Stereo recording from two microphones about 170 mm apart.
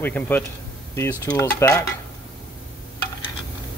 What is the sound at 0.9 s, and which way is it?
Dishes, 15° left (ahead or behind).